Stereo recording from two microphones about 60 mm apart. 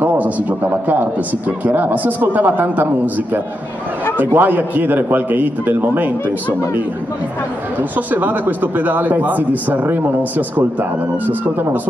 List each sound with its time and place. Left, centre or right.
0.0 s a man's voice: right
4.2 s a man's voice: right
8.1 s speech: right